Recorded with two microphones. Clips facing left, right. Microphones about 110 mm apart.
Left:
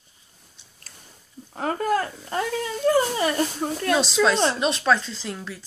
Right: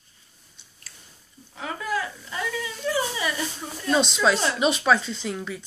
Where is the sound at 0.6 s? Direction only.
Centre (ahead or behind).